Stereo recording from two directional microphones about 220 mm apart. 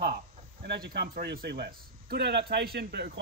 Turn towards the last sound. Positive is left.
turn(degrees=-45)  # may be behind; listen again after turning